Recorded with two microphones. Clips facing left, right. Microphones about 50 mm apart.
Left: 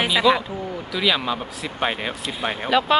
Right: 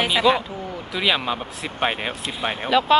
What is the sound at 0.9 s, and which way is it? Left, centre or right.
Speech, right.